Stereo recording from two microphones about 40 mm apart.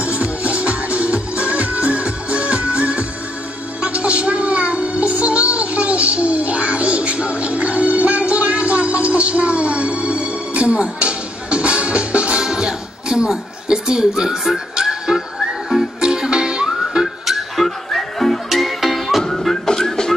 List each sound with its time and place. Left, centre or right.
0.0 s music: right
12.4 s music: centre
17.0 s music: centre